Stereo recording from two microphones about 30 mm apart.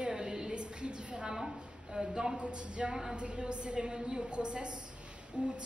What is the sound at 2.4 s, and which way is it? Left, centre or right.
A woman's voice, right.